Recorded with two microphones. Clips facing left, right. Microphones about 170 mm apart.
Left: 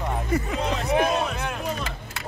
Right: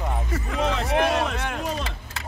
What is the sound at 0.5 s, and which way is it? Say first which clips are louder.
Speech: right 3 dB; 80° right.